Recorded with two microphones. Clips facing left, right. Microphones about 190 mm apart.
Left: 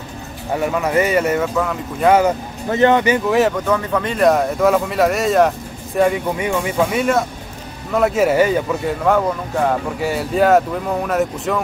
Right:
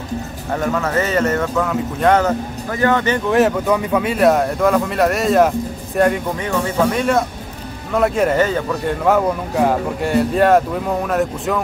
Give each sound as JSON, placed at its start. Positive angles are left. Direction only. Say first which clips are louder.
{"t": 0.5, "sound": "speech", "louder": "left 1 dB", "side_deg": 10}
{"t": 2.7, "sound": "speech", "louder": "left 3 dB", "side_deg": 20}
{"t": 3.3, "sound": "speech", "louder": "right 1 dB", "side_deg": 0}
{"t": 3.6, "sound": "speech", "louder": "right 2 dB", "side_deg": -15}
{"t": 6.4, "sound": "speech", "louder": "right 2 dB", "side_deg": 10}
{"t": 9.0, "sound": "speech", "louder": "right 1 dB", "side_deg": -5}